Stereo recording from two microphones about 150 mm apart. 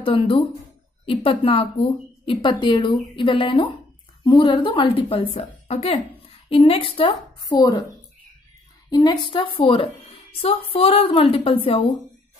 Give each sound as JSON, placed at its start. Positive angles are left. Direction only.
{"t": 0.0, "sound": "a woman's voice", "side_deg": 35}
{"t": 8.9, "sound": "a woman's voice", "side_deg": 30}